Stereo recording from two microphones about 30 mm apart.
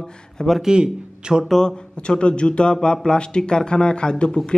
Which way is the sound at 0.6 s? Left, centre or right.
Right.